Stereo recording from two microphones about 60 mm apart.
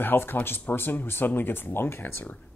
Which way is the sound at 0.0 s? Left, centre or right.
Left.